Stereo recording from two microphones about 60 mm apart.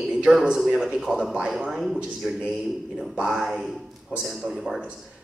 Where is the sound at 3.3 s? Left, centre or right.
Centre.